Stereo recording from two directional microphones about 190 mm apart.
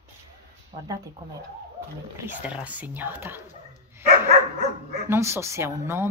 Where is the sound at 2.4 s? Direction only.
5° right (ahead or behind).